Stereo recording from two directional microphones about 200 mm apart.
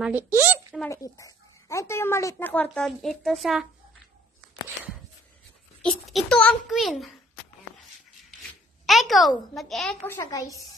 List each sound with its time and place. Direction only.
0.0 s speech: 10° right (ahead or behind)
0.8 s speech: 15° left (ahead or behind); by 3.6 s centre (ahead or behind)
5.8 s a child's voice: centre (ahead or behind)
8.8 s a child's voice: centre (ahead or behind)
10.1 s speech: 15° left (ahead or behind)